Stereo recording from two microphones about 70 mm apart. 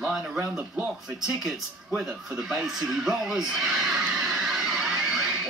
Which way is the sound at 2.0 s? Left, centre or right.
Centre.